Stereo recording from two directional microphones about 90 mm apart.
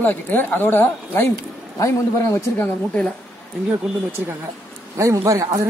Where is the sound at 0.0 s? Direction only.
20° left (ahead or behind).